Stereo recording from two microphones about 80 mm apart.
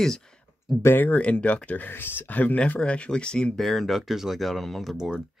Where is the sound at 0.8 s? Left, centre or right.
Left.